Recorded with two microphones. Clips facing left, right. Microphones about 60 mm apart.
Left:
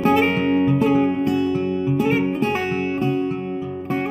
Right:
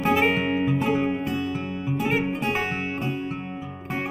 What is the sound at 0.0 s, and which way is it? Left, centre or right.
Music, centre.